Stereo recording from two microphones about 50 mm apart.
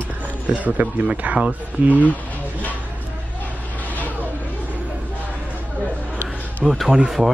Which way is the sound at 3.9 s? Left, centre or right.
Left.